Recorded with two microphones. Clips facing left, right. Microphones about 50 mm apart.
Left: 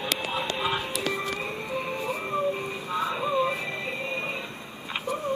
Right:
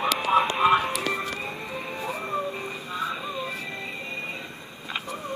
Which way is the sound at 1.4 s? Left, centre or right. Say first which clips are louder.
Left 2 dB; centre.